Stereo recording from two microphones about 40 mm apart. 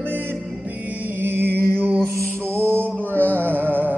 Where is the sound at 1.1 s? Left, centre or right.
Right.